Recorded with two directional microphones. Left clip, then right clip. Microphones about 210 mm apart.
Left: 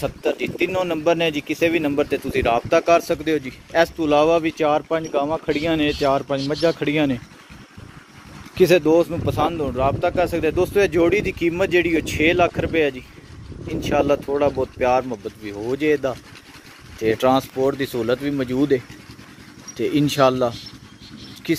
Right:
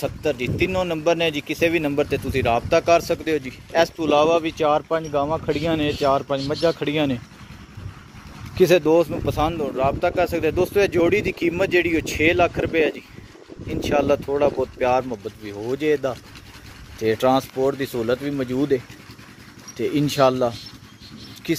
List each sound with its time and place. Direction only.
0.0 s speech: 5° right (ahead or behind)
8.5 s speech: 10° right (ahead or behind)
19.8 s speech: 5° right (ahead or behind)